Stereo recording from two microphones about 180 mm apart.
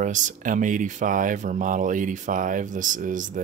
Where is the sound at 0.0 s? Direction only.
45° right (ahead or behind).